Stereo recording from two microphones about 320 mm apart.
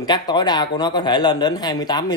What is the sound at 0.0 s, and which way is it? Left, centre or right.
Speech, centre.